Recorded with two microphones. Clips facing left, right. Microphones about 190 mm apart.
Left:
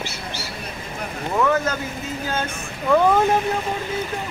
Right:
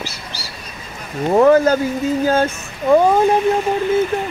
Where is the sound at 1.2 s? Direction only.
40° right (ahead or behind).